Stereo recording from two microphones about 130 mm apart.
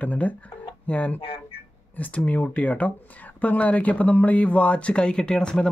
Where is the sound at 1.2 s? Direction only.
45° left (ahead or behind).